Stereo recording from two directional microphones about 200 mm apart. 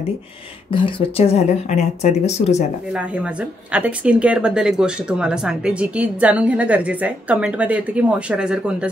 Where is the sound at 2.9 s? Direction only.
5° right (ahead or behind).